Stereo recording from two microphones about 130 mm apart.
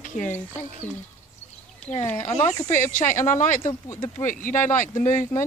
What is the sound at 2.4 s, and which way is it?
Speech, 80° left.